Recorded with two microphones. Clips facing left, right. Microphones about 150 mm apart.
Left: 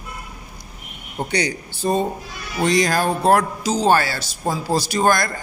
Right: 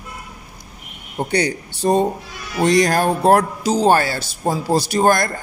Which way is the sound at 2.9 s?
55° right (ahead or behind).